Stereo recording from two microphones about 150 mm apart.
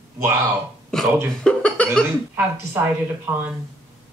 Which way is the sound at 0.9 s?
5° left (ahead or behind).